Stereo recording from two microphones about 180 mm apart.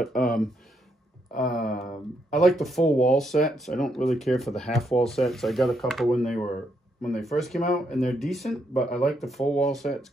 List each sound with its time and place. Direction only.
0.1 s speech: 50° left (ahead or behind)
1.5 s speech: centre (ahead or behind)